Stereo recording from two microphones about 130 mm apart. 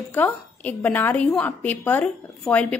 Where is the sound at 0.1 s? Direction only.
15° left (ahead or behind).